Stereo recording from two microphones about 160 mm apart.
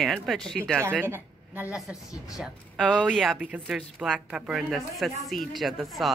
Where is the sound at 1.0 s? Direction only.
15° right (ahead or behind).